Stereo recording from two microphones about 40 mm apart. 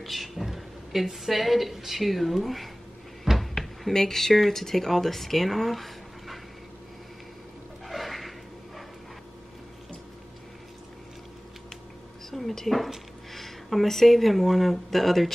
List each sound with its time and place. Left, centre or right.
0.0 s a woman's voice: centre
3.3 s cupboard open or close: centre
3.9 s speech: centre
7.8 s a sound: centre
12.3 s speech: centre